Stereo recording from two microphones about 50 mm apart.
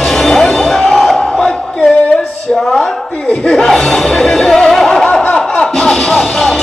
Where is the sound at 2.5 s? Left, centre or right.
Centre.